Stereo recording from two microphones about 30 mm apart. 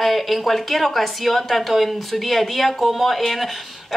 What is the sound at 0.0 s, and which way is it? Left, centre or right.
A woman's voice, centre.